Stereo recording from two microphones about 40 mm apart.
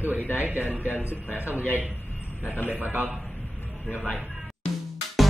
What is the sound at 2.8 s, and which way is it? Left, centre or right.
Speech, right.